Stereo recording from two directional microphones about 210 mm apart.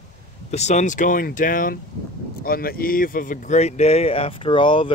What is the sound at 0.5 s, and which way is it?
Speech, 35° left (ahead or behind).